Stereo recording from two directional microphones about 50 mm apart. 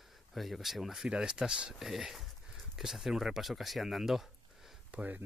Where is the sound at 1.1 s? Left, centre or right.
Centre.